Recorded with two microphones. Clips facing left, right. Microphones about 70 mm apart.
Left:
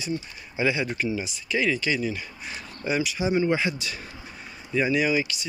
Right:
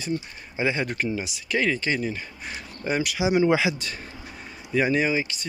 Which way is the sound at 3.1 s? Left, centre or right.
Right.